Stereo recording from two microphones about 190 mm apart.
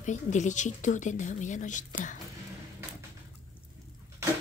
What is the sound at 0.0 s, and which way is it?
A woman's voice, 40° left (ahead or behind).